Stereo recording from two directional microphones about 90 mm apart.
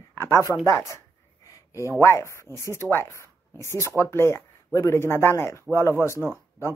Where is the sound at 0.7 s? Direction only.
35° left (ahead or behind).